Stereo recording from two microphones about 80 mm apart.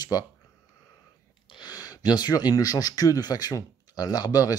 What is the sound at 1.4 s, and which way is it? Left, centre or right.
Speech, left.